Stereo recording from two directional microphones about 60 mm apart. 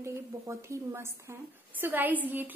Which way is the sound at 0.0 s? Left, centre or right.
Right.